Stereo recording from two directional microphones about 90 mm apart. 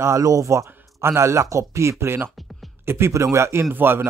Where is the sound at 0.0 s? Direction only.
35° right (ahead or behind).